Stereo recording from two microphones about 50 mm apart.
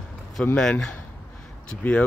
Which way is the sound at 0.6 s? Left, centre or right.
Centre.